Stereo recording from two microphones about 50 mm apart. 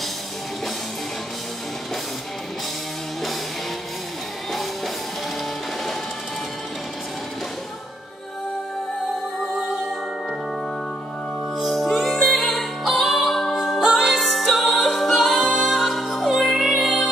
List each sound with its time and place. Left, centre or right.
9.5 s music: centre
11.5 s music: centre